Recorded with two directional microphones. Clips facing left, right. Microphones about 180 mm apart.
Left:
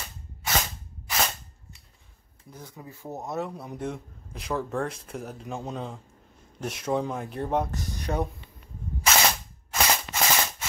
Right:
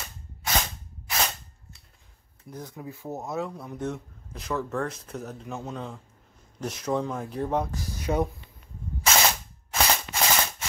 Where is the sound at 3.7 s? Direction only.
Centre (ahead or behind).